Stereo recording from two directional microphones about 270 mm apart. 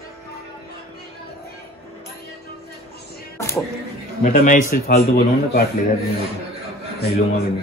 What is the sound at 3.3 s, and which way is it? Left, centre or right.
Music, centre.